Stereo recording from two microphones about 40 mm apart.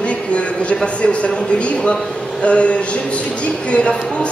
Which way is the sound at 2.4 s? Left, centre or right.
Left.